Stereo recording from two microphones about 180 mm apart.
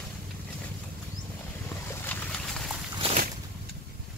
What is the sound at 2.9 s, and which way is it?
Boat, 35° right (ahead or behind).